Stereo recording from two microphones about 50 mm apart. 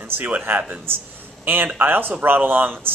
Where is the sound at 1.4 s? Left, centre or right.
Right.